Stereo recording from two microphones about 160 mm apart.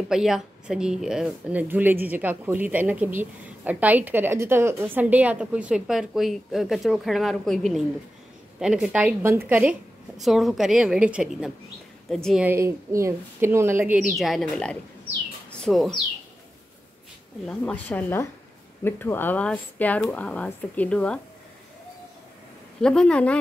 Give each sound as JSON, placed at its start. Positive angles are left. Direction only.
{"t": 0.1, "sound": "a woman's voice", "side_deg": -5}
{"t": 12.4, "sound": "a woman's voice", "side_deg": -15}
{"t": 14.0, "sound": "a woman's voice", "side_deg": 0}
{"t": 17.5, "sound": "speech", "side_deg": 10}
{"t": 22.8, "sound": "a woman's voice", "side_deg": 5}